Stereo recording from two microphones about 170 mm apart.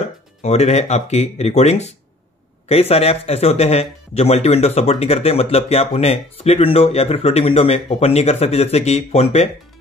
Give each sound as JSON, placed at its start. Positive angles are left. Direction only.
{"t": 0.4, "sound": "speech", "side_deg": 40}